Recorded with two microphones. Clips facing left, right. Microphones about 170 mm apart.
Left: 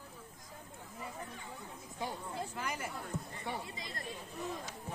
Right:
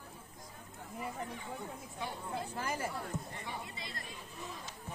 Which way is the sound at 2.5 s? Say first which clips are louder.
Right 3 dB; 30° right (ahead or behind).